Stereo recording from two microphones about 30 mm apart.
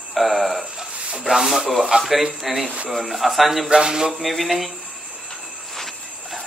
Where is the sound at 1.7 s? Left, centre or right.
Centre.